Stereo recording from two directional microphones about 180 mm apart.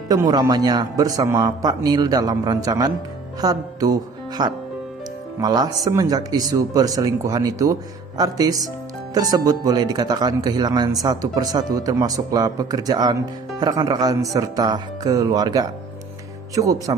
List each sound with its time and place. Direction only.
0.1 s speech: 20° right (ahead or behind)